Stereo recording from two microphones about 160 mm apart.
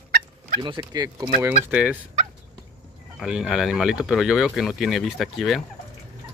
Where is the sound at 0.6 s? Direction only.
25° right (ahead or behind).